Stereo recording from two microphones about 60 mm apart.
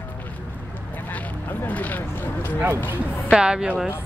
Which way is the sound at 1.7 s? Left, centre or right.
Left.